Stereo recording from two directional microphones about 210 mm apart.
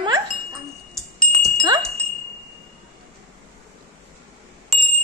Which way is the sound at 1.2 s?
Centre (ahead or behind).